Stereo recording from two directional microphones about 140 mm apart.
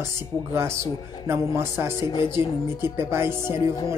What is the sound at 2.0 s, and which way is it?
Speech, 30° left (ahead or behind).